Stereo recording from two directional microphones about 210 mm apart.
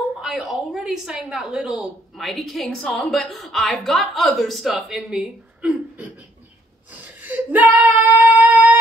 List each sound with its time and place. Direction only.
0.2 s a woman's voice: centre (ahead or behind)
6.9 s female singing: 10° right (ahead or behind)